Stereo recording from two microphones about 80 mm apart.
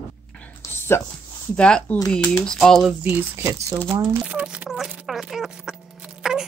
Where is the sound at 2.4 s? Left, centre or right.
Centre.